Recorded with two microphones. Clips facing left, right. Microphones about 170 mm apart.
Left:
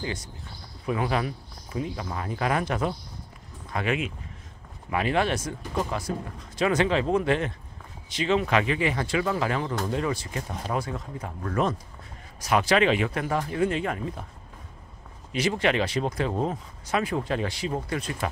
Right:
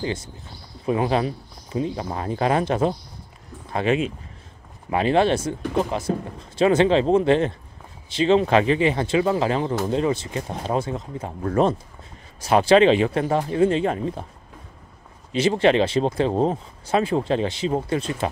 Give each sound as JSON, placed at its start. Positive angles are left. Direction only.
{"t": 0.0, "sound": "speech", "side_deg": -25}
{"t": 15.3, "sound": "speech", "side_deg": -30}